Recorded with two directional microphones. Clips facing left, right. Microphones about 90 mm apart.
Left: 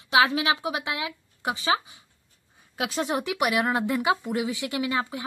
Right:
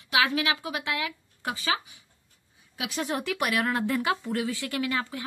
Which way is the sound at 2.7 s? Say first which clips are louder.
Left 4 dB; 35° left (ahead or behind).